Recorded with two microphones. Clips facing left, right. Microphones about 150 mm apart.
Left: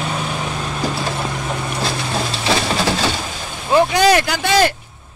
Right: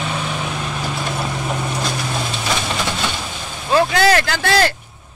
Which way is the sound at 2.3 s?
35° left (ahead or behind).